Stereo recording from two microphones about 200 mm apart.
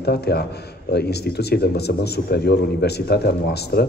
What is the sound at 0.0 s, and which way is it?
A man's voice, 55° left (ahead or behind).